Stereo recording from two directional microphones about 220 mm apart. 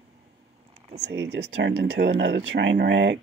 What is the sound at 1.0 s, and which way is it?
Speech, 50° right (ahead or behind).